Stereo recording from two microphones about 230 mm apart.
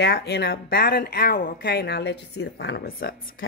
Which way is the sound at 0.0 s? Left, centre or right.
Left.